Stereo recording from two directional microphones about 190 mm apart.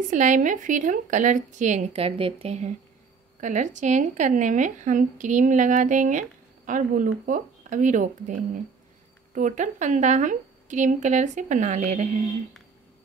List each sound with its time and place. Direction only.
0.1 s speech: 40° right (ahead or behind)